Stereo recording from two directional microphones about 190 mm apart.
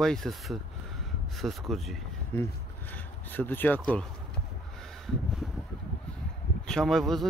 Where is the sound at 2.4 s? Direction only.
10° left (ahead or behind).